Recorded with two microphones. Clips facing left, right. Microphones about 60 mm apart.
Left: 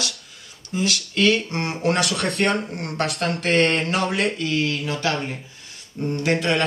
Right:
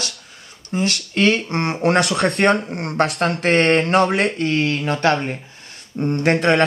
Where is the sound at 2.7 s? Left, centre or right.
Right.